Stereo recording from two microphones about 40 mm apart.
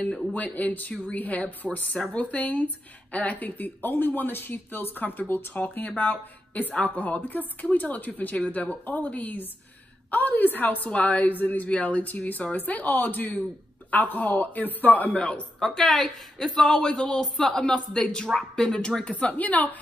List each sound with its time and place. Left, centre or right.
0.3 s speech: left
10.9 s speech: left
11.7 s speech: left
15.1 s speech: left
15.6 s a woman's voice: centre; by 19.1 s left
19.1 s speech: left